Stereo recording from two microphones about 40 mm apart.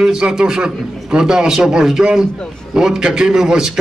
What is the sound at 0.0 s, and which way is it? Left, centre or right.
A man's voice, centre.